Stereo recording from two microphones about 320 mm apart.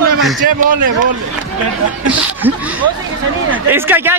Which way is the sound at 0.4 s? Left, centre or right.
Right.